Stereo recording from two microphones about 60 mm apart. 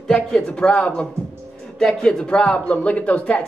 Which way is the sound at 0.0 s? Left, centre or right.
Centre.